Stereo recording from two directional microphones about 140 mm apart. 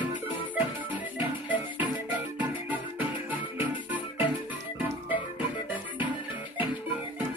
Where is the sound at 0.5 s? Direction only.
10° right (ahead or behind).